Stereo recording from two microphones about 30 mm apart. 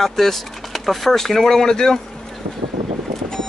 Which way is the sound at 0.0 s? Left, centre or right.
Centre.